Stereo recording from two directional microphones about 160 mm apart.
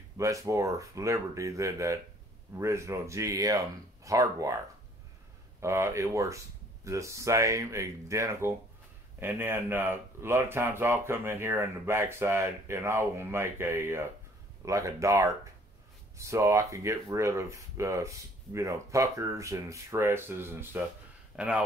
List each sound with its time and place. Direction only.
0.2 s speech: 20° right (ahead or behind)
5.6 s speech: 15° right (ahead or behind)